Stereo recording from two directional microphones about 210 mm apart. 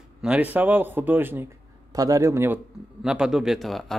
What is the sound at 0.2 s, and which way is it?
A man's voice, 5° right (ahead or behind).